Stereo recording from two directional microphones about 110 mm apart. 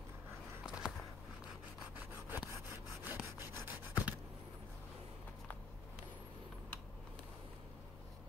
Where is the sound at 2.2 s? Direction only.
20° right (ahead or behind).